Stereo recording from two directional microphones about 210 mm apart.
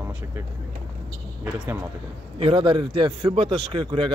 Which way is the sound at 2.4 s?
25° right (ahead or behind).